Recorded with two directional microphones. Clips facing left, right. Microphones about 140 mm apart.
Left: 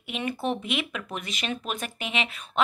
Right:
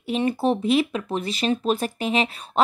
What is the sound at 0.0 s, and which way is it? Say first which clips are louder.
Speech: right 8 dB; 35° right (ahead or behind).